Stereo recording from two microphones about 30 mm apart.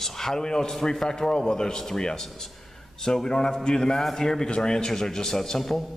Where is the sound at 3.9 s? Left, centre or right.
Centre.